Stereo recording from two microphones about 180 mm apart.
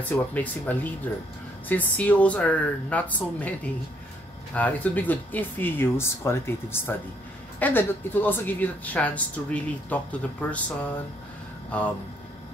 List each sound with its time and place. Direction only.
0.1 s a woman's voice: 10° left (ahead or behind)
4.6 s a woman's voice: 10° left (ahead or behind)
11.7 s a woman's voice: 10° left (ahead or behind)